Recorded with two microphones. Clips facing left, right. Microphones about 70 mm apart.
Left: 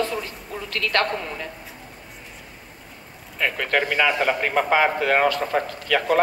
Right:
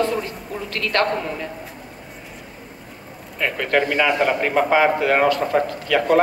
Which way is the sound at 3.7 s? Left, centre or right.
Centre.